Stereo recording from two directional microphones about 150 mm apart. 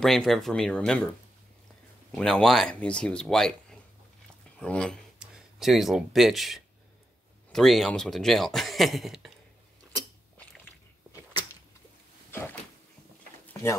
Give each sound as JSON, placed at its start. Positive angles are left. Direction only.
{"t": 0.0, "sound": "speech", "side_deg": 0}
{"t": 2.1, "sound": "speech", "side_deg": 5}
{"t": 4.6, "sound": "speech", "side_deg": 5}
{"t": 12.3, "sound": "a sound", "side_deg": 15}